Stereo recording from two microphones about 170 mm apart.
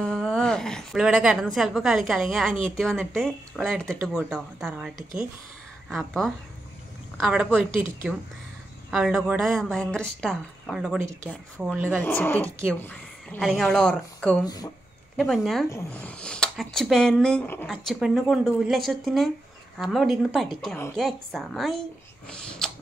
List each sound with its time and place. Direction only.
0.0 s a woman's voice: 5° left (ahead or behind)
11.0 s speech: 15° right (ahead or behind)
11.6 s speech: centre (ahead or behind)
12.0 s speech: 10° left (ahead or behind)
14.4 s speech: 20° left (ahead or behind)
15.1 s speech: centre (ahead or behind)